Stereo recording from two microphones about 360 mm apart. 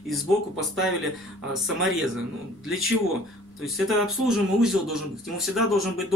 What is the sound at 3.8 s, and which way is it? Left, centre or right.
Speech, centre.